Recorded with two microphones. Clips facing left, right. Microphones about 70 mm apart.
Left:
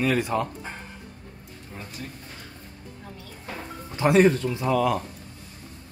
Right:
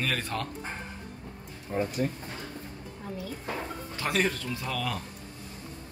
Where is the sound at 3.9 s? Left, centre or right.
Left.